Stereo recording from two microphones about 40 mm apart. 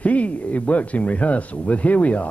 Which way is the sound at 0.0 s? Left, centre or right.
Left.